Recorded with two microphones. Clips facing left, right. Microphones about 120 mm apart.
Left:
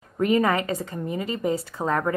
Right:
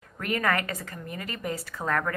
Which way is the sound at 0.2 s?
25° left (ahead or behind).